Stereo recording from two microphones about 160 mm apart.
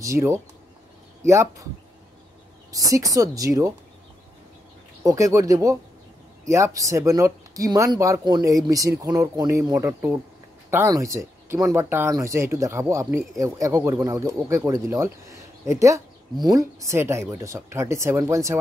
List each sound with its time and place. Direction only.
0.0 s speech: 20° right (ahead or behind)
2.7 s speech: 20° right (ahead or behind)
5.0 s speech: 20° right (ahead or behind)